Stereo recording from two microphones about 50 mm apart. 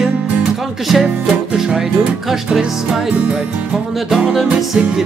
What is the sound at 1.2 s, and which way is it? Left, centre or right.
Music, centre.